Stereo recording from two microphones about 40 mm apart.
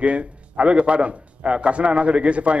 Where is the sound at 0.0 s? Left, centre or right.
Right.